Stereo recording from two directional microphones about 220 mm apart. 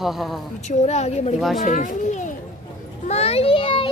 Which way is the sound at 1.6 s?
35° left (ahead or behind).